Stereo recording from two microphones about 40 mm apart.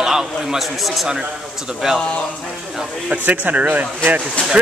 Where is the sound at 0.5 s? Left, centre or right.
Centre.